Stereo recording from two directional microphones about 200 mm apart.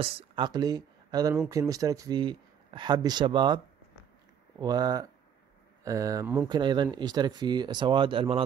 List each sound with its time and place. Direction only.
0.0 s speech: 25° right (ahead or behind)